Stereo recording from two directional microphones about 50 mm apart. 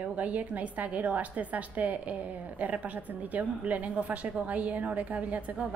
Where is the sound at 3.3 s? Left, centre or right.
Right.